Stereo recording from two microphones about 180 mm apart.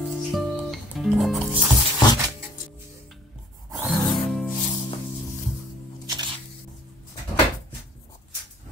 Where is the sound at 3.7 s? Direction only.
Centre (ahead or behind).